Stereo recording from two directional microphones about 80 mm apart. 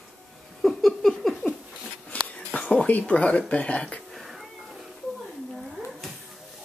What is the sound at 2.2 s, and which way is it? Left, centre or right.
Speech, centre.